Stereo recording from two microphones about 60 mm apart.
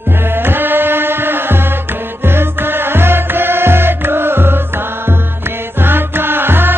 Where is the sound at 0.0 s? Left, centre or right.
Right.